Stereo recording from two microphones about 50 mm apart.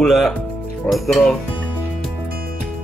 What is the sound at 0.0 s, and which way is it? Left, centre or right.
Speech, centre.